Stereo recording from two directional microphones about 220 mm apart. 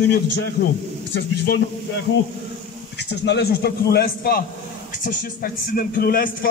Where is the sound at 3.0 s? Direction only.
50° left (ahead or behind).